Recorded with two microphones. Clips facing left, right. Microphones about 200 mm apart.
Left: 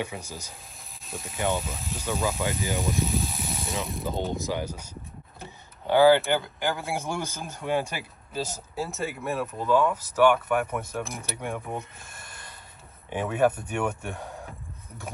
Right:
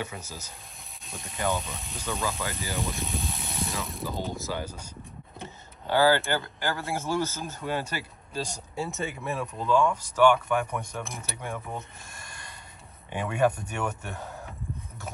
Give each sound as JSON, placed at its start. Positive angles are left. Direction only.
{"t": 0.0, "sound": "speech", "side_deg": 10}
{"t": 2.8, "sound": "mechanisms", "side_deg": 0}
{"t": 4.3, "sound": "speech", "side_deg": 15}
{"t": 5.9, "sound": "speech", "side_deg": 15}
{"t": 11.7, "sound": "neigh", "side_deg": 5}
{"t": 13.1, "sound": "speech", "side_deg": 5}